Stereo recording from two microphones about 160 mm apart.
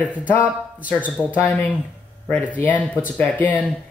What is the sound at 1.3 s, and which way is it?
Speech, 10° left (ahead or behind).